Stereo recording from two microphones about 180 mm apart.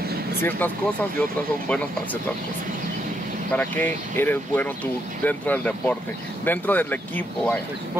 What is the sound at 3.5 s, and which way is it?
Speech, 10° left (ahead or behind).